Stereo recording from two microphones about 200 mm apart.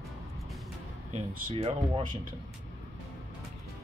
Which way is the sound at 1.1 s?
30° right (ahead or behind).